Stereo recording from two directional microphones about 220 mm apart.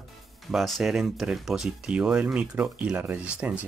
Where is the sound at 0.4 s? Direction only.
Centre (ahead or behind).